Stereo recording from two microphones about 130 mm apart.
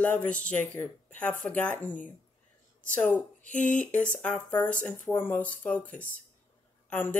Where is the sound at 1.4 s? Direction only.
10° left (ahead or behind).